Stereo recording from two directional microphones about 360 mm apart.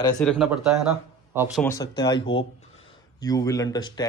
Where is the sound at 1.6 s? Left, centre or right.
Centre.